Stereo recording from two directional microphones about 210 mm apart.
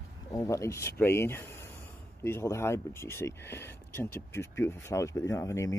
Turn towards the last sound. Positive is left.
turn(degrees=15)  # may be behind; listen again after turning